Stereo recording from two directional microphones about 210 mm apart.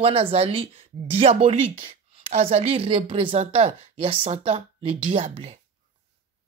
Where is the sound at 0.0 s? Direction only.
25° right (ahead or behind).